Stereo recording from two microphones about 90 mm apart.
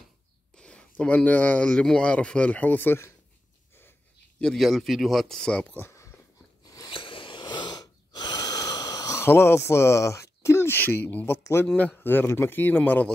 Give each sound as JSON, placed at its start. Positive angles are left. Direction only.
{"t": 0.6, "sound": "speech", "side_deg": 10}
{"t": 4.4, "sound": "speech", "side_deg": 5}
{"t": 5.8, "sound": "a sound", "side_deg": 30}
{"t": 6.6, "sound": "a sound", "side_deg": 45}
{"t": 6.9, "sound": "wheeze", "side_deg": 75}
{"t": 9.2, "sound": "speech", "side_deg": 25}
{"t": 11.6, "sound": "speech", "side_deg": 15}